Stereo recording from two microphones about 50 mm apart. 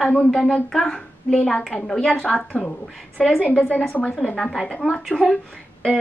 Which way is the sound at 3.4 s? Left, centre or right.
Left.